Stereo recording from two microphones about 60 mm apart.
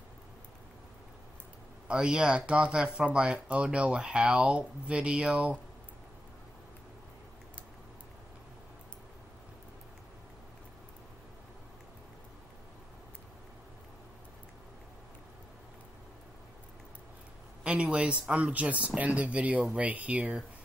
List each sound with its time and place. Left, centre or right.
1.9 s speech: centre
17.6 s speech: centre